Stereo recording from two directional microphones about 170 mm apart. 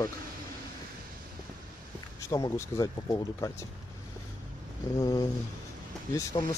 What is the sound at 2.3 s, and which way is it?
Speech, 20° left (ahead or behind).